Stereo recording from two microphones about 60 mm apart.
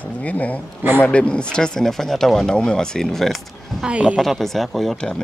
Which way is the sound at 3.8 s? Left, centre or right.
Centre.